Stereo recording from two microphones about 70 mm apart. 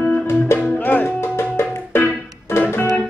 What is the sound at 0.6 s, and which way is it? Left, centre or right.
Music, left.